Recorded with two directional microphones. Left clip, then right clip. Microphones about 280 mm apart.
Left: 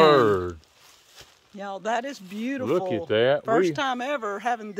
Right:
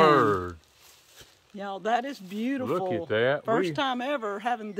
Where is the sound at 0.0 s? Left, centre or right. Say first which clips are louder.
Left 3 dB; left.